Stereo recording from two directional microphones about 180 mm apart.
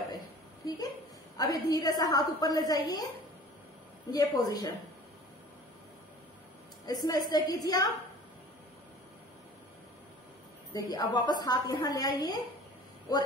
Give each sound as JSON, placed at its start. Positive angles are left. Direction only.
{"t": 1.3, "sound": "a woman's voice", "side_deg": 20}
{"t": 4.1, "sound": "a woman's voice", "side_deg": 20}
{"t": 6.9, "sound": "a woman's voice", "side_deg": 20}
{"t": 10.7, "sound": "a woman's voice", "side_deg": 20}